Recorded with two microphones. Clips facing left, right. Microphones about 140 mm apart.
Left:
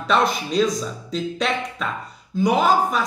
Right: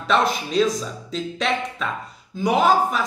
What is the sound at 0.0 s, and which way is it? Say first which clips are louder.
A woman's voice: even; centre (ahead or behind).